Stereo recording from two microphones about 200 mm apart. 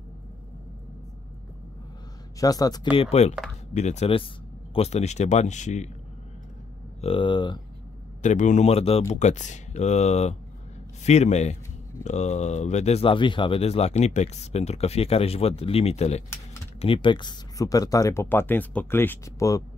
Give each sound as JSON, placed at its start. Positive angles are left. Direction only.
{"t": 2.4, "sound": "speech", "side_deg": 20}
{"t": 3.0, "sound": "speech", "side_deg": 30}
{"t": 7.0, "sound": "speech", "side_deg": 25}
{"t": 8.2, "sound": "speech", "side_deg": 40}